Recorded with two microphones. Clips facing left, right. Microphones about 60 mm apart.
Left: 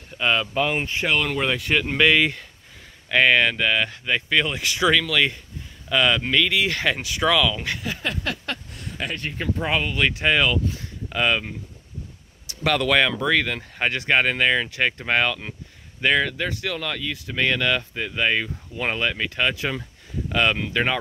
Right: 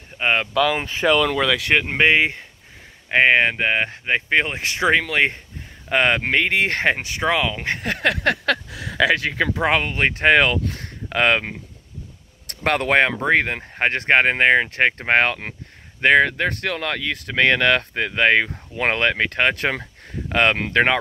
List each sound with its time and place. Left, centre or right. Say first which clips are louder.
0.2 s speech: right 2 dB; right
1.5 s speech: right 4 dB; right
1.8 s speech: even; right
7.8 s speech: right 8 dB; right
9.9 s speech: right 4 dB; right
12.4 s speech: right 1 dB; right